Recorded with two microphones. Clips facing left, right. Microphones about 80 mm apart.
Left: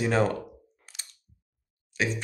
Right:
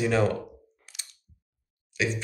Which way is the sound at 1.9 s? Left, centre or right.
Left.